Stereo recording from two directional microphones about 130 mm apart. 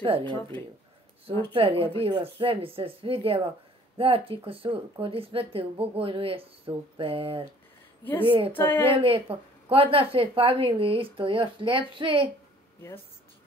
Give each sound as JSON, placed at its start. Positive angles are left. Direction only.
{"t": 0.0, "sound": "speech", "side_deg": -40}
{"t": 1.5, "sound": "a woman's voice", "side_deg": -45}
{"t": 8.0, "sound": "a woman's voice", "side_deg": 15}
{"t": 8.3, "sound": "a woman's voice", "side_deg": -40}
{"t": 8.5, "sound": "speech", "side_deg": 15}
{"t": 8.8, "sound": "a woman's voice", "side_deg": -45}